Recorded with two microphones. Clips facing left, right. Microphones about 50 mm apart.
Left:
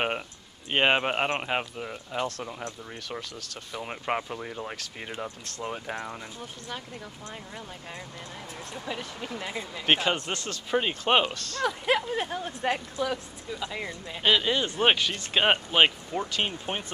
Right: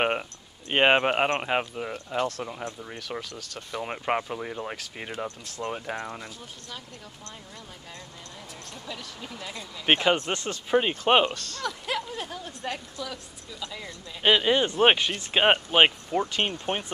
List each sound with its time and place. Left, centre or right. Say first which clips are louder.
0.7 s speech: right 3 dB; centre
8.8 s speech: left 4 dB; left
9.8 s speech: right 3 dB; centre
10.7 s speech: right 3 dB; centre
11.5 s speech: left 5 dB; left
14.2 s speech: right 3 dB; right
16.7 s speech: right 3 dB; centre